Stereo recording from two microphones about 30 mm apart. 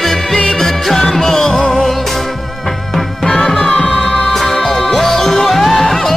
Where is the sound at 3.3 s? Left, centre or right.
Left.